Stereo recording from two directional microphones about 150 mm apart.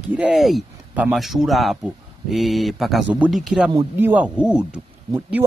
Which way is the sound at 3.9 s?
10° right (ahead or behind).